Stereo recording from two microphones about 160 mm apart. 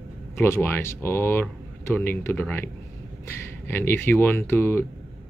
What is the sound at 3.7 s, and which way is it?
Speech, 15° left (ahead or behind).